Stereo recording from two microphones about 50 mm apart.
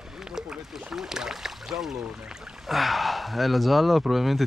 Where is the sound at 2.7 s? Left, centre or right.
Centre.